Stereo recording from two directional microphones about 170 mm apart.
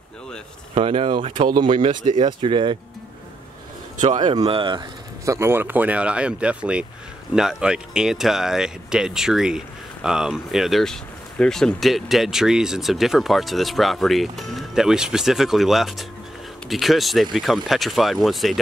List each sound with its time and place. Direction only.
0.7 s speech: 35° right (ahead or behind)
4.2 s speech: 25° right (ahead or behind); by 18.6 s centre (ahead or behind)